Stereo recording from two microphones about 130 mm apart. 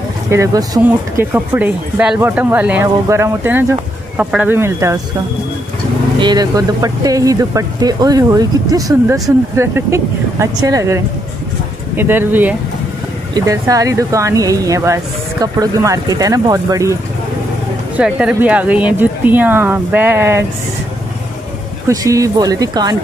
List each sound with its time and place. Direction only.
0.3 s speech: 25° right (ahead or behind)
0.8 s speech: 15° right (ahead or behind)
6.1 s speech: 35° right (ahead or behind)
12.0 s speech: 15° right (ahead or behind)
13.3 s speech: 25° right (ahead or behind)
17.9 s speech: 10° right (ahead or behind)
21.8 s speech: 25° right (ahead or behind)